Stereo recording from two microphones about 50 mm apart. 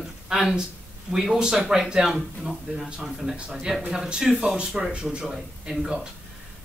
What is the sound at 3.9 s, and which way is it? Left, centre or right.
A man's voice, centre.